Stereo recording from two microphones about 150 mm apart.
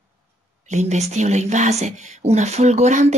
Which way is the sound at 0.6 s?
50° right (ahead or behind).